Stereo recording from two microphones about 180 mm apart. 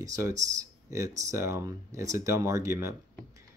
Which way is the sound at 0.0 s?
20° right (ahead or behind).